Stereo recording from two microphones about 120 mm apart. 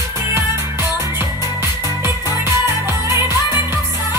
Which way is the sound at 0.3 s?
20° right (ahead or behind).